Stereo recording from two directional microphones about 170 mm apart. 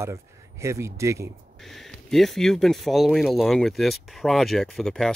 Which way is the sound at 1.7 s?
Centre (ahead or behind).